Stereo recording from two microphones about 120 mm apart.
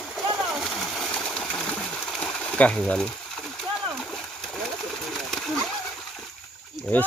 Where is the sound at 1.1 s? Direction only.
5° left (ahead or behind).